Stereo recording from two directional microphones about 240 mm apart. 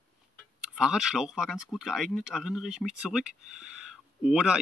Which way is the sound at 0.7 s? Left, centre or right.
Centre.